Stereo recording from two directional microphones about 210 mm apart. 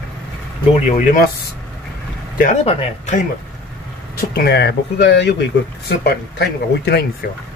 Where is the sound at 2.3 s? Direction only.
35° left (ahead or behind).